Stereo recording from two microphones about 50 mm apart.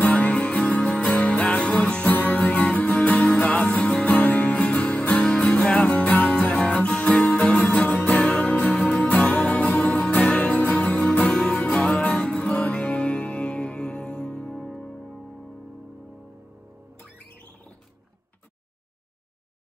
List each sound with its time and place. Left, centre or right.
0.0 s music: left